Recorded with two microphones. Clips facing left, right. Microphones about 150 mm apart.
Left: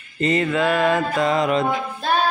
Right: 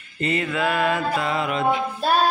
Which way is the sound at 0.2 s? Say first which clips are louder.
Left 4 dB; 40° left (ahead or behind).